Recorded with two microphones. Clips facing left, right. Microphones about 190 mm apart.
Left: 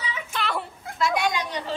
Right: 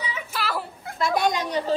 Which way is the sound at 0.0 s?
5° right (ahead or behind).